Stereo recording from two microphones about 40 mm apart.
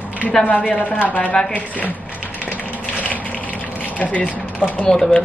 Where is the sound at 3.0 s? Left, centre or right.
Left.